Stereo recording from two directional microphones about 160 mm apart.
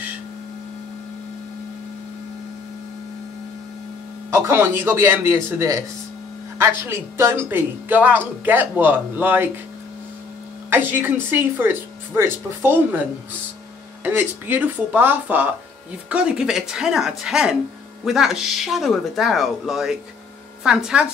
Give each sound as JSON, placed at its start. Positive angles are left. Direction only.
{"t": 4.3, "sound": "speech", "side_deg": -15}
{"t": 10.7, "sound": "speech", "side_deg": -10}
{"t": 14.0, "sound": "speech", "side_deg": -15}